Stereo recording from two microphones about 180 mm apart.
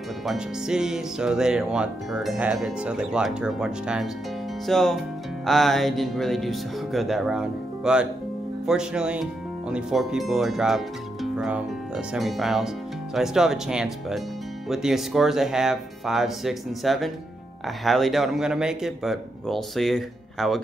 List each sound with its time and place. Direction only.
0.2 s speech: centre (ahead or behind)